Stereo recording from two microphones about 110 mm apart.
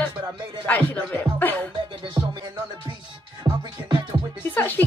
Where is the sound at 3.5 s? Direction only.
40° right (ahead or behind).